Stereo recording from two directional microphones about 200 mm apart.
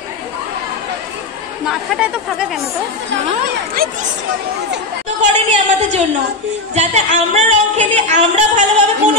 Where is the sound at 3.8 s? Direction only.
45° right (ahead or behind).